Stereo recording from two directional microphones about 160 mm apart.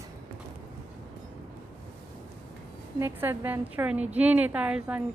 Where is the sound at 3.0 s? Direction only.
15° right (ahead or behind).